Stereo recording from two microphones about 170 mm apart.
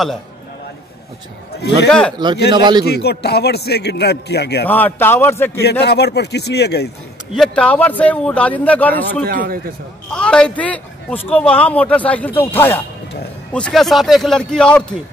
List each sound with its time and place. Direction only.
1.5 s a man's voice: 75° left (ahead or behind)
1.9 s a man's voice: 5° left (ahead or behind)
2.5 s a man's voice: 25° right (ahead or behind)
2.8 s a man's voice: 70° left (ahead or behind)
4.6 s a man's voice: 10° left (ahead or behind)
5.6 s a man's voice: 75° left (ahead or behind)
7.3 s a man's voice: 5° left (ahead or behind)
9.3 s a man's voice: 60° right (ahead or behind)
10.1 s a man's voice: 5° left (ahead or behind)